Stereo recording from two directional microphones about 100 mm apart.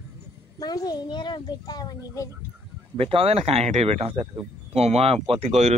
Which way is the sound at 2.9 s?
65° right (ahead or behind).